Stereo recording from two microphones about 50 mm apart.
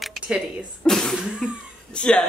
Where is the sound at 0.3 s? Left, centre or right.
Right.